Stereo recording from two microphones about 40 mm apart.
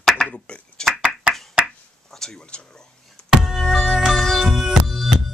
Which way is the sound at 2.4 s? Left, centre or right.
Left.